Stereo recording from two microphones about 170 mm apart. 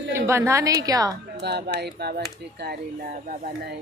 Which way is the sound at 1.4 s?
75° right (ahead or behind).